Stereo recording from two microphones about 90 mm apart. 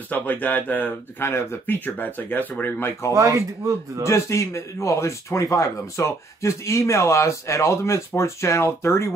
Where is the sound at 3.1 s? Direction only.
35° right (ahead or behind).